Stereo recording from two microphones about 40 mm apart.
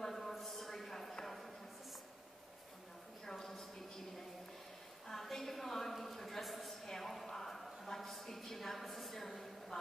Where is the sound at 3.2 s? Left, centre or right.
Centre.